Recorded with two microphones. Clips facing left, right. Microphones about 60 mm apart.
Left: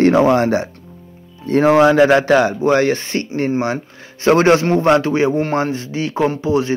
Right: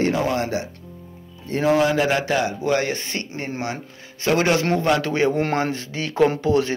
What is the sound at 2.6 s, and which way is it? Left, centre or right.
A man's voice, left.